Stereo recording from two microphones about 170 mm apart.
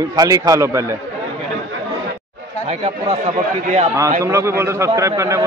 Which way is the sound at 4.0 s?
20° right (ahead or behind).